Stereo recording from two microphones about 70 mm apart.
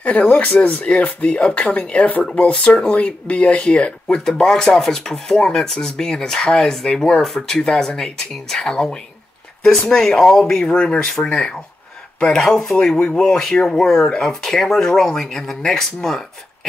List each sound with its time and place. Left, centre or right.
0.0 s speech: centre